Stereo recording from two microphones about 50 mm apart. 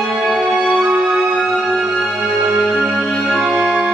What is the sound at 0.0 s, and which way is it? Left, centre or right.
Music, centre.